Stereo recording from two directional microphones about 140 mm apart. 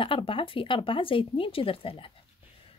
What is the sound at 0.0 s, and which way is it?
A woman's voice, 40° left (ahead or behind).